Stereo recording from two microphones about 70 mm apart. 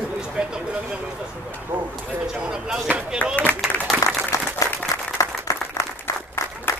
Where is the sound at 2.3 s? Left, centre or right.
Centre.